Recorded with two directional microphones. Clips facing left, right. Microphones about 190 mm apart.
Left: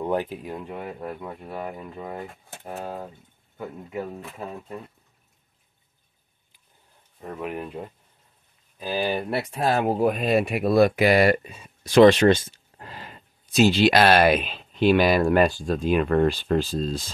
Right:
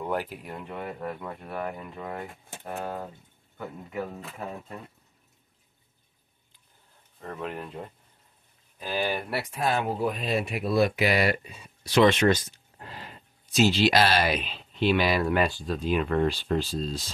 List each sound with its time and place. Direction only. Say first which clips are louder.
0.0 s speech: left 5 dB; 20° left (ahead or behind); by 3.1 s 5° left (ahead or behind)
7.2 s speech: left 3 dB; 10° left (ahead or behind)
9.5 s speech: left 4 dB; 35° left (ahead or behind)
12.8 s speech: left 2 dB; 50° left (ahead or behind)